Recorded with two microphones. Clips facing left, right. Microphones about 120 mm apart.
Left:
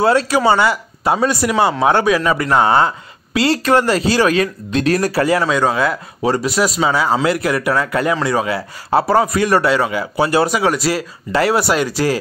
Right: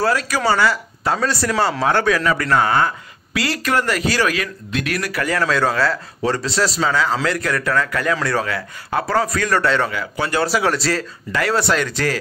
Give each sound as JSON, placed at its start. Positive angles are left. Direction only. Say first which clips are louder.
{"t": 0.0, "sound": "speech", "louder": "left 5 dB", "side_deg": 25}
{"t": 5.4, "sound": "a man's voice", "louder": "left 2 dB", "side_deg": 10}
{"t": 8.5, "sound": "speech", "louder": "left 6 dB", "side_deg": 25}
{"t": 10.5, "sound": "speech", "louder": "left 2 dB", "side_deg": 0}
{"t": 11.3, "sound": "speech", "louder": "left 4 dB", "side_deg": 25}